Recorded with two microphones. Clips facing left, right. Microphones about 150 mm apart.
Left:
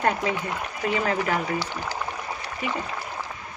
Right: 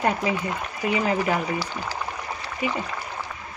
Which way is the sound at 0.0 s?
10° right (ahead or behind).